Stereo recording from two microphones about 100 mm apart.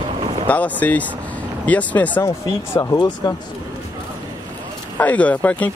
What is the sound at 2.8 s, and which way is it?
Speech, 45° left (ahead or behind).